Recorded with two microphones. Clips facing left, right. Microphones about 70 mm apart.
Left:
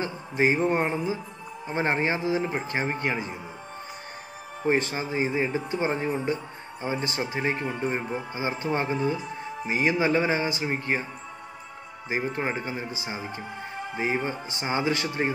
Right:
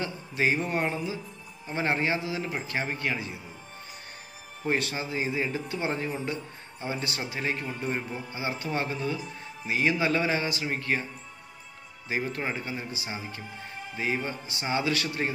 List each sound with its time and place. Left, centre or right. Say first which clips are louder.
0.0 s speech: left 3 dB; left
4.6 s speech: left 4 dB; left
12.1 s speech: left 3 dB; left